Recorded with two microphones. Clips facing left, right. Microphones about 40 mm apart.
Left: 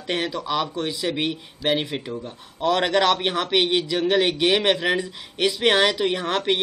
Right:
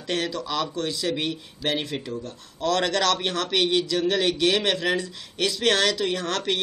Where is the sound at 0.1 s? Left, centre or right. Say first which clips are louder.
Left 2 dB; centre.